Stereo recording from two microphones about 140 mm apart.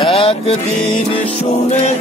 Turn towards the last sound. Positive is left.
turn(degrees=45)  # may be behind; listen again after turning